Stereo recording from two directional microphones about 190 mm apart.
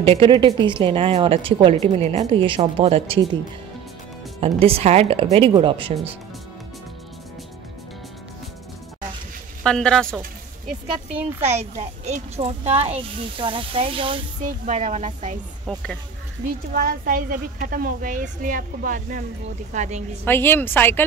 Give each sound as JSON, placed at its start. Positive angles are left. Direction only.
{"t": 0.0, "sound": "a woman's voice", "side_deg": -30}
{"t": 4.4, "sound": "a woman's voice", "side_deg": -30}
{"t": 9.6, "sound": "speech", "side_deg": 5}
{"t": 11.1, "sound": "speech", "side_deg": -10}
{"t": 12.0, "sound": "a woman's voice", "side_deg": -35}
{"t": 14.4, "sound": "a woman's voice", "side_deg": -45}
{"t": 16.7, "sound": "a woman's voice", "side_deg": -50}
{"t": 20.2, "sound": "a woman's voice", "side_deg": 10}